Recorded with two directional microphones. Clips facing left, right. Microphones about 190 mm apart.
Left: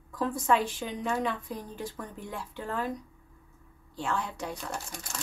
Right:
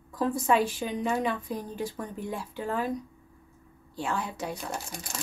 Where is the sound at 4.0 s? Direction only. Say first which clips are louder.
Right 1 dB; 10° right (ahead or behind).